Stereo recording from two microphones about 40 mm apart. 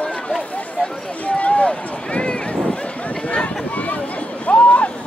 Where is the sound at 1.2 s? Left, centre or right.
Left.